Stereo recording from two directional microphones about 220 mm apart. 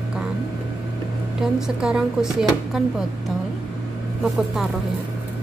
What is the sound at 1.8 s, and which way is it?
Speech, 5° right (ahead or behind).